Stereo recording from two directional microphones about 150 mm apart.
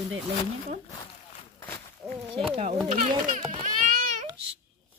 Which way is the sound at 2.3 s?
40° right (ahead or behind).